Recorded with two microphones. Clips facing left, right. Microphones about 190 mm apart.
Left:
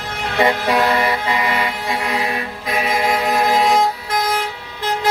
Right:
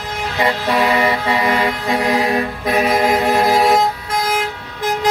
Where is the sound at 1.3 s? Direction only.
35° right (ahead or behind).